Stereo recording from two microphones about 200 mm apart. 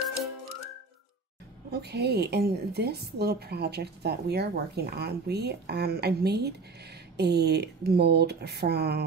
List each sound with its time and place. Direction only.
1.7 s a woman's voice: 55° right (ahead or behind)